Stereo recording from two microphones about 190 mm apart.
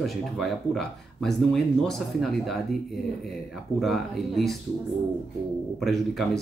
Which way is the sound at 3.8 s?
Centre (ahead or behind).